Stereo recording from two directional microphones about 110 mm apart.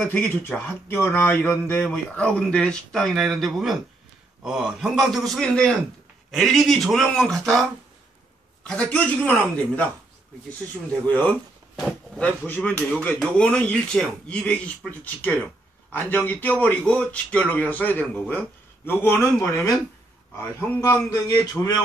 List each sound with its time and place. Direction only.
0.0 s speech: 15° left (ahead or behind)
8.6 s speech: 10° left (ahead or behind)
10.9 s speech: 15° left (ahead or behind)
18.9 s speech: 20° left (ahead or behind)
20.7 s speech: 25° left (ahead or behind)
21.1 s a sound: 30° left (ahead or behind)